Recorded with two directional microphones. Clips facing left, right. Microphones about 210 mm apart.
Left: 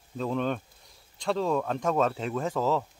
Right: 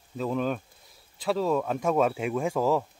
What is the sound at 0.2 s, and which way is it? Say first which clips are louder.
Speech: right 1 dB; 5° right (ahead or behind).